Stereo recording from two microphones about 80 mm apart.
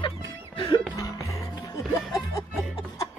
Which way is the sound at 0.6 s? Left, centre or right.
Left.